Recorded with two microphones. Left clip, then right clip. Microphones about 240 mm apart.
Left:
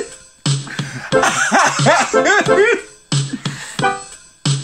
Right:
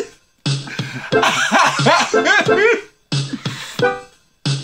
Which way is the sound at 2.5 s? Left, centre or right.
Left.